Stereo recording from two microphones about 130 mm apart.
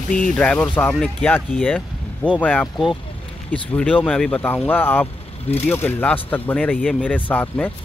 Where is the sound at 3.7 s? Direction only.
10° left (ahead or behind).